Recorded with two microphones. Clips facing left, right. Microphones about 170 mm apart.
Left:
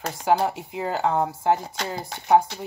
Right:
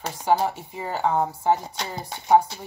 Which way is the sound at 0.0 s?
65° left (ahead or behind).